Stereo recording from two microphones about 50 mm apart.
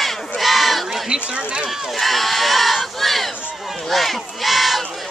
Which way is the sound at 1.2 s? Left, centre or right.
Right.